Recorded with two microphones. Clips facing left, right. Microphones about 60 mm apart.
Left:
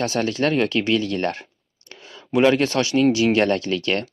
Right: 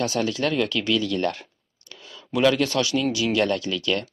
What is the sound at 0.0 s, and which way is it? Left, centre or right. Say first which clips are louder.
Speech: left 3 dB; left.